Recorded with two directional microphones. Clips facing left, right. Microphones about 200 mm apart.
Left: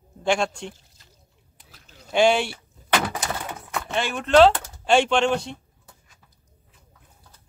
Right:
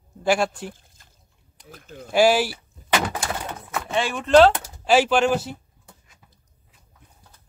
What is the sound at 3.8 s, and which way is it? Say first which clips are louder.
Speech: right 2 dB; centre (ahead or behind).